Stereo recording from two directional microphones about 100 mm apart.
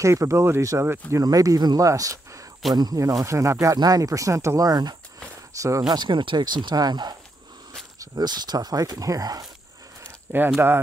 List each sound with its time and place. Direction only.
0.0 s speech: 30° right (ahead or behind)
5.9 s speech: 50° right (ahead or behind)